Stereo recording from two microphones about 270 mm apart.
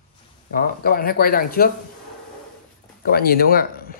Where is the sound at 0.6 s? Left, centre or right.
Left.